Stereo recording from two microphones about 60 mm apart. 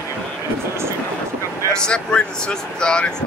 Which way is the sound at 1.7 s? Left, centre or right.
Centre.